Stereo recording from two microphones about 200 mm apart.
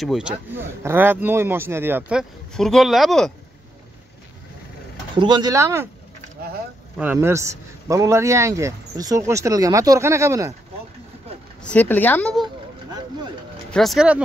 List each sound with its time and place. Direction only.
0.0 s a man's voice: 5° right (ahead or behind)
5.1 s speech: 25° right (ahead or behind)
7.0 s a man's voice: 10° right (ahead or behind)
11.6 s speech: 5° left (ahead or behind)
13.7 s speech: centre (ahead or behind)